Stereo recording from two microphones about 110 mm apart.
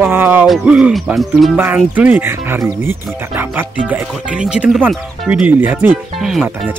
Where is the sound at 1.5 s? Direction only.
15° right (ahead or behind).